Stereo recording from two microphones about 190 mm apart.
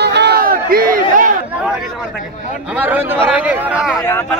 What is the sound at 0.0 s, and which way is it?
Crowd, 60° right (ahead or behind).